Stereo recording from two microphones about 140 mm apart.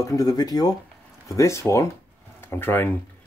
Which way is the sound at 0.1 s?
25° left (ahead or behind).